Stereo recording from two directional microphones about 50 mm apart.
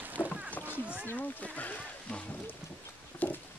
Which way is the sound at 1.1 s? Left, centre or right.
Left.